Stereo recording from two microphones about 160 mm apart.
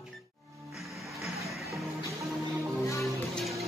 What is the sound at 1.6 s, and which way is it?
Music, 20° right (ahead or behind).